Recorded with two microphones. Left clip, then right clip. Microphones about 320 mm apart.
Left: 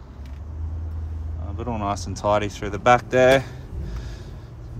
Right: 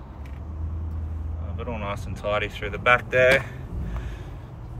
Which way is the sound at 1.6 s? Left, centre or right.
Centre.